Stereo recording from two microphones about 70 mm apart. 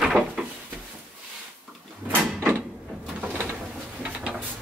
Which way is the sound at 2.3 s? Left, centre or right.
Right.